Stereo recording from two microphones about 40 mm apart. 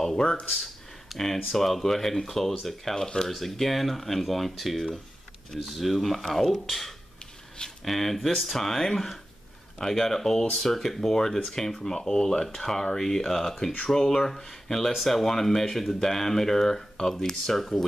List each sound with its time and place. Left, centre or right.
0.2 s speech: left
0.6 s speech: centre